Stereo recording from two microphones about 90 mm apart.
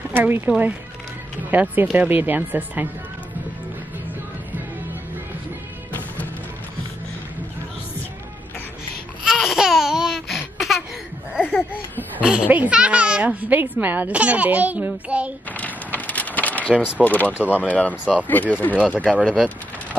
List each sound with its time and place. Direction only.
0.1 s speech: 20° right (ahead or behind)
1.5 s speech: 20° right (ahead or behind)
9.2 s babbling: 5° right (ahead or behind)
11.5 s a sound: 20° left (ahead or behind)
12.2 s a child's voice: 10° right (ahead or behind)
15.5 s a sound: 15° left (ahead or behind)
16.7 s a child's voice: 15° right (ahead or behind)
17.0 s speech: 20° left (ahead or behind)
17.4 s a child's voice: 15° right (ahead or behind)
17.6 s speech: 15° left (ahead or behind)
19.3 s vehicle: 10° right (ahead or behind)